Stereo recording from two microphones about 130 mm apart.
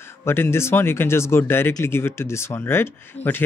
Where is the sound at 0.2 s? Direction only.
20° left (ahead or behind).